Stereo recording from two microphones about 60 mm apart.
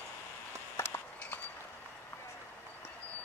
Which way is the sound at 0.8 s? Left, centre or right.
Left.